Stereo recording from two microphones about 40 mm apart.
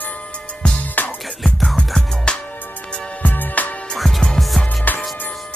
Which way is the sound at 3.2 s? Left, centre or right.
Left.